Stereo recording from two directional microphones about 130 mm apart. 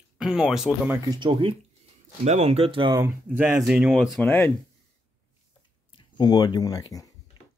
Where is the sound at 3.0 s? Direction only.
15° right (ahead or behind).